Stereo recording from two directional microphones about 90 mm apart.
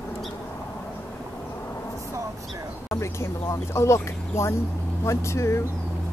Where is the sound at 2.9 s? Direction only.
30° left (ahead or behind).